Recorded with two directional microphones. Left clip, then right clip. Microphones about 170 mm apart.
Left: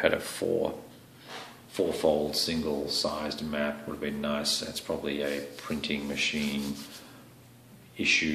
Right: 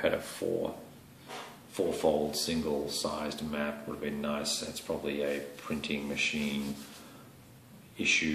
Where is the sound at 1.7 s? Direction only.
20° left (ahead or behind).